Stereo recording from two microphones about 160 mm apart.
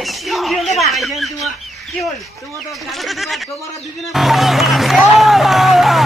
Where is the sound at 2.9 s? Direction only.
Centre (ahead or behind).